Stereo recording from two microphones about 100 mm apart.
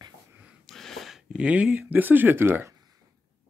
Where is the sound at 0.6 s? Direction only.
5° left (ahead or behind); by 2.8 s 25° right (ahead or behind).